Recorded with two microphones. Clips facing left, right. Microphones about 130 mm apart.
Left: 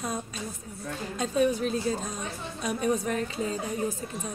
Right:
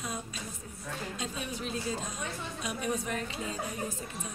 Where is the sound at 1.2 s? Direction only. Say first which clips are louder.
Left 17 dB; 45° left (ahead or behind).